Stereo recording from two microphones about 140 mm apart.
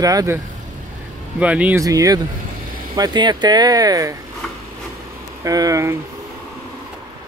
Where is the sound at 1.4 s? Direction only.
10° right (ahead or behind).